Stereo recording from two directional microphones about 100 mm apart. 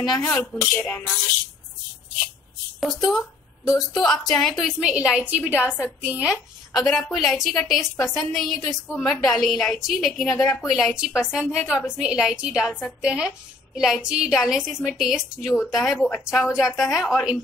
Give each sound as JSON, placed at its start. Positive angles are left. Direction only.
{"t": 0.0, "sound": "a woman's voice", "side_deg": 0}
{"t": 0.7, "sound": "speech", "side_deg": 20}
{"t": 2.8, "sound": "a woman's voice", "side_deg": 0}
{"t": 6.9, "sound": "a woman's voice", "side_deg": 0}